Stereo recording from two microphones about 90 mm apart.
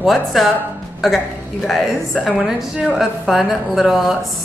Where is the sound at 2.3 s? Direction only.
5° right (ahead or behind).